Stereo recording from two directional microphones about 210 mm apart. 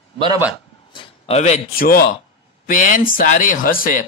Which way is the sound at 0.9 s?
25° left (ahead or behind).